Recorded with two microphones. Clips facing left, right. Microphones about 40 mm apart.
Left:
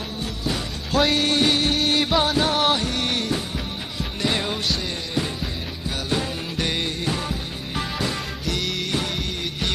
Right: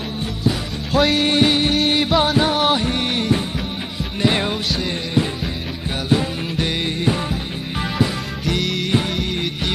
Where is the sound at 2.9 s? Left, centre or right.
Right.